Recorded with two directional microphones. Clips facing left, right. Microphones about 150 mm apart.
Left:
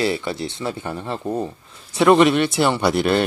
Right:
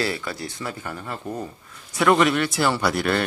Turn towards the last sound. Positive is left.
turn(degrees=25)  # may be behind; listen again after turning